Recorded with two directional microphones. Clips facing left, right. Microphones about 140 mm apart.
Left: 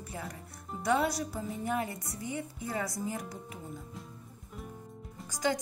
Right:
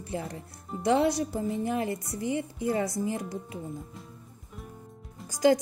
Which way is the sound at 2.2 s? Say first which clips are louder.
Right 8 dB; 90° right.